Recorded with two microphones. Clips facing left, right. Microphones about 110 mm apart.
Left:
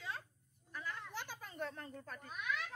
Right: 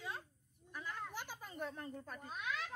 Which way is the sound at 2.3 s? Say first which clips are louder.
Left 1 dB; 30° right (ahead or behind).